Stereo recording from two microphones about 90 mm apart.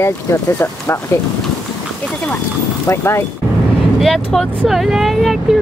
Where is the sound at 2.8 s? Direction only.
30° left (ahead or behind).